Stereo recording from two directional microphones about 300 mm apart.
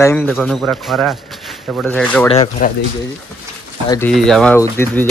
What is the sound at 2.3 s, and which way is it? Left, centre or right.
Speech, left.